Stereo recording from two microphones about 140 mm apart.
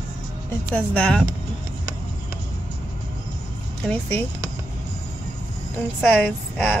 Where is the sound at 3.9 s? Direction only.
10° left (ahead or behind).